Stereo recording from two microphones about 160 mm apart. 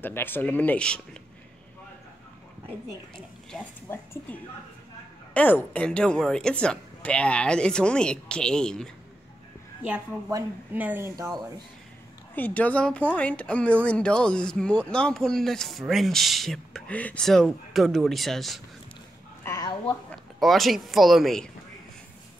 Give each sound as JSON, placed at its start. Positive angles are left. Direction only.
{"t": 0.0, "sound": "speech", "side_deg": 10}
{"t": 3.9, "sound": "speech", "side_deg": 15}
{"t": 10.7, "sound": "speech", "side_deg": -10}
{"t": 12.4, "sound": "speech", "side_deg": 10}
{"t": 19.4, "sound": "a sound", "side_deg": 20}
{"t": 20.3, "sound": "speech", "side_deg": 0}